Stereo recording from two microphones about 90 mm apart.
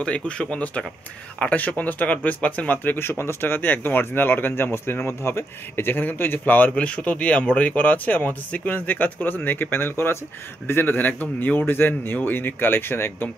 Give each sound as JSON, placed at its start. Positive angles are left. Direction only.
{"t": 0.0, "sound": "speech", "side_deg": 10}